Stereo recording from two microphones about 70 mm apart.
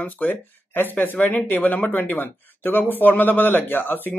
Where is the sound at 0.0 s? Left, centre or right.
Left.